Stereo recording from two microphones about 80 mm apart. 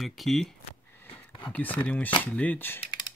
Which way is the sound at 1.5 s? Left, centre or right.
Centre.